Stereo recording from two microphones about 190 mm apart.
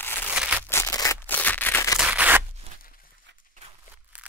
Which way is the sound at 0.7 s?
15° left (ahead or behind).